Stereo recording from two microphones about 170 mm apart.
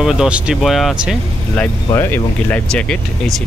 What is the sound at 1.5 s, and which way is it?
Speech, 15° left (ahead or behind).